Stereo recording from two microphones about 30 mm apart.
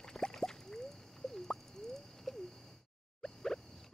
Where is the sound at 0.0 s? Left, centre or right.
Centre.